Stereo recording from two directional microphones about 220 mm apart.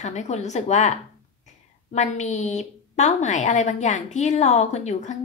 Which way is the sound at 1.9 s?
30° left (ahead or behind).